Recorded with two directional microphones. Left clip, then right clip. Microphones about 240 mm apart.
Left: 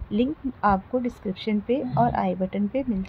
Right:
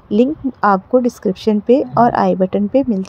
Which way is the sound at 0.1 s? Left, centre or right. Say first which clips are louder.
Right 11 dB; right.